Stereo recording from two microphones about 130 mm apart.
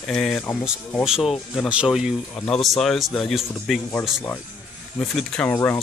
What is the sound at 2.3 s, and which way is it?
Speech, 10° left (ahead or behind).